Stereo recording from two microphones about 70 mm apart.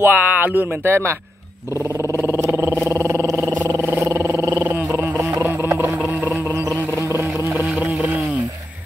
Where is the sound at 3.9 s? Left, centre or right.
Right.